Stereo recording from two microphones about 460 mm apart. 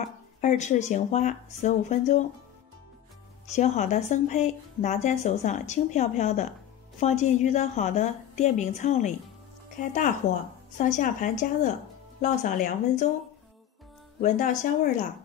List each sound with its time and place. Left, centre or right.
0.4 s speech: centre
3.5 s speech: centre
10.8 s speech: centre
14.2 s speech: centre